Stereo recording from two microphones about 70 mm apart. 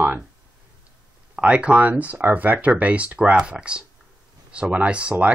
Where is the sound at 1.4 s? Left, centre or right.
Centre.